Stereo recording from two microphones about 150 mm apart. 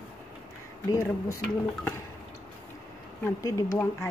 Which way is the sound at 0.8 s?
20° left (ahead or behind).